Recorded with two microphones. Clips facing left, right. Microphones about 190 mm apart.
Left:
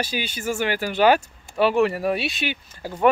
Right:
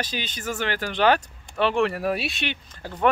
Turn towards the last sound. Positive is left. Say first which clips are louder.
# left 3 dB
turn(degrees=10)  # may be behind; listen again after turning